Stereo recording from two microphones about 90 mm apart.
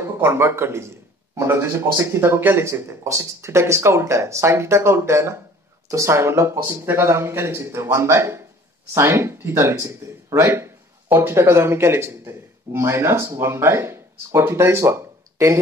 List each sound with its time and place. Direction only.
0.0 s a man's voice: 30° right (ahead or behind)